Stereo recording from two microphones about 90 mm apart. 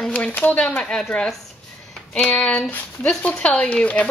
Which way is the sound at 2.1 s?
15° left (ahead or behind).